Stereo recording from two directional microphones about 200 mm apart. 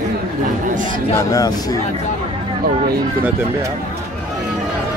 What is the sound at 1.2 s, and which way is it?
Speech, 15° left (ahead or behind).